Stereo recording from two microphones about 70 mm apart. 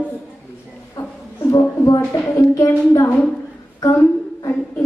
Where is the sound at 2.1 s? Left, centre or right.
Left.